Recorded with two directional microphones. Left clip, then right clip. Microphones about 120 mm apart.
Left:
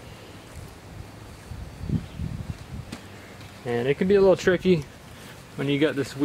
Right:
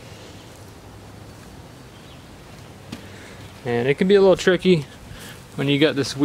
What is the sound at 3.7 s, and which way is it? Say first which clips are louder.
Speech: right 4 dB; 20° right (ahead or behind).